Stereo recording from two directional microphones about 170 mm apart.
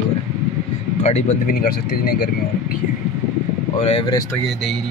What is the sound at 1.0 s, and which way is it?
Speech, 40° left (ahead or behind).